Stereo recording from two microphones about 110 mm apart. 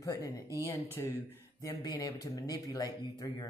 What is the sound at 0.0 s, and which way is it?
Speech, 30° left (ahead or behind).